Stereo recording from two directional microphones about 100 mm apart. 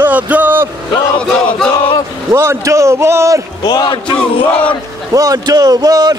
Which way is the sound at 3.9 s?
60° left (ahead or behind).